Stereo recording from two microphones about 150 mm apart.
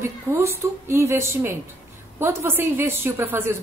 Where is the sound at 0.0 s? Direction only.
20° right (ahead or behind).